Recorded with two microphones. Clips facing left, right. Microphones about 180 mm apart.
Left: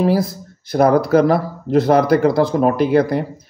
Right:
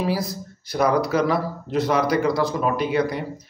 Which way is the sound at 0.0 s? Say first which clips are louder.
Left 8 dB; 55° left (ahead or behind).